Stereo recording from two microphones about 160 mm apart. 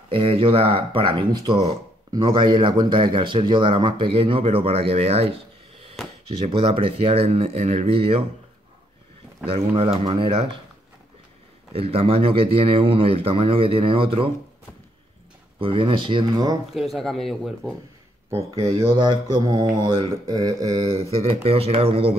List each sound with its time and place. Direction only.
0.1 s speech: 35° right (ahead or behind)
10.0 s speech: 35° right (ahead or behind)
11.7 s speech: 40° right (ahead or behind)
15.6 s speech: 35° right (ahead or behind)
16.7 s speech: centre (ahead or behind)
18.6 s speech: 25° right (ahead or behind)
21.2 s speech: 40° right (ahead or behind)